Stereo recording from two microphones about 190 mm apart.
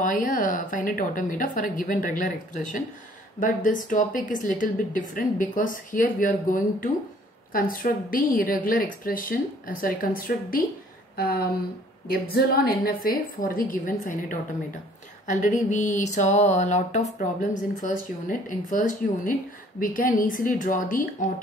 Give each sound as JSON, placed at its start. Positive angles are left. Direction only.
{"t": 0.0, "sound": "speech", "side_deg": 45}
{"t": 15.2, "sound": "a sound", "side_deg": 40}
{"t": 17.2, "sound": "speech", "side_deg": 40}